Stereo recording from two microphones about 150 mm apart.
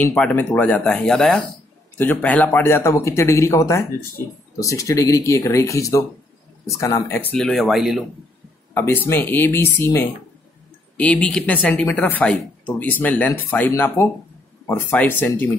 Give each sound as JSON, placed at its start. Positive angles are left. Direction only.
{"t": 0.0, "sound": "speech", "side_deg": 10}
{"t": 8.7, "sound": "speech", "side_deg": 15}